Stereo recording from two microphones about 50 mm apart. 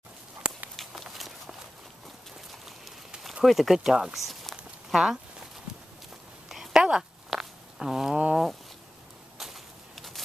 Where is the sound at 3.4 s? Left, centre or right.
Centre.